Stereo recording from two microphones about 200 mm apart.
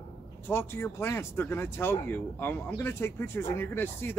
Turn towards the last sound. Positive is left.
turn(degrees=10)  # may be behind; listen again after turning